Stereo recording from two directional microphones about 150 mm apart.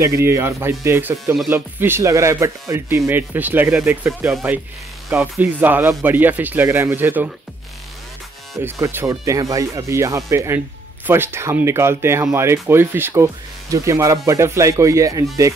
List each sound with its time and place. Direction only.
0.0 s speech: 20° right (ahead or behind)
8.6 s speech: 15° right (ahead or behind)